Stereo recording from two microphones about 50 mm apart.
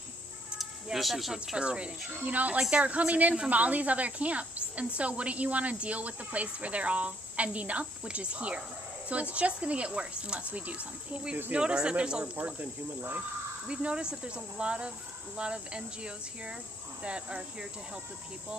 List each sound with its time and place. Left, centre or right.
0.9 s speech: centre
1.3 s speech: centre
2.2 s speech: right
13.7 s speech: centre